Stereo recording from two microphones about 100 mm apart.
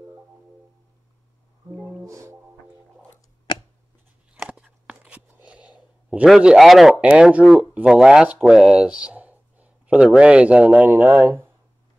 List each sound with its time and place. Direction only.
2.0 s music: 30° right (ahead or behind)
4.3 s a sound: 10° right (ahead or behind)
7.0 s speech: 10° right (ahead or behind)